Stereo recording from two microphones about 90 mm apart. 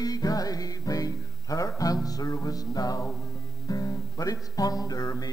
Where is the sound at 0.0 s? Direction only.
45° left (ahead or behind).